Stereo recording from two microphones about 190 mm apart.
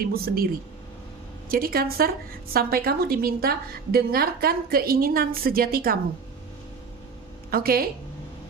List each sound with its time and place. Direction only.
0.0 s a woman's voice: 50° right (ahead or behind)
1.5 s a woman's voice: 50° right (ahead or behind)
7.5 s a woman's voice: 50° right (ahead or behind)